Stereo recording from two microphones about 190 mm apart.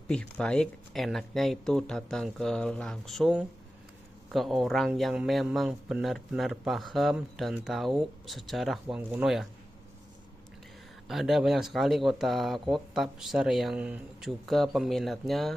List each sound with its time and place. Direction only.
0.1 s a man's voice: 5° left (ahead or behind)
11.1 s a man's voice: centre (ahead or behind)